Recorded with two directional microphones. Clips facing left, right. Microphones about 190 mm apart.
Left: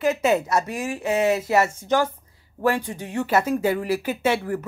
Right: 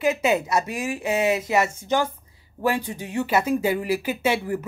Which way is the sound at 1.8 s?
Centre (ahead or behind).